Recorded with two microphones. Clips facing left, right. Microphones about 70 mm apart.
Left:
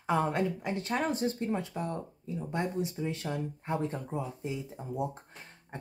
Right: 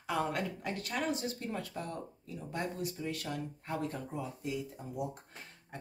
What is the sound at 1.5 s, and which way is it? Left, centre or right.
Speech, left.